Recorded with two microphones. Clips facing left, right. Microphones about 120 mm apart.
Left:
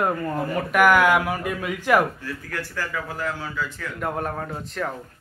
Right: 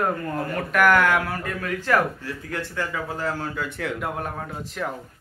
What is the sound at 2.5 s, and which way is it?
Speech, 25° right (ahead or behind).